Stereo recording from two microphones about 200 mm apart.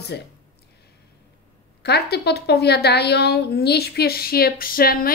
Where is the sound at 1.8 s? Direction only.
55° left (ahead or behind).